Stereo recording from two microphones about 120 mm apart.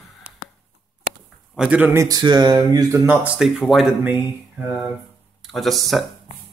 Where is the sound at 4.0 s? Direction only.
15° right (ahead or behind).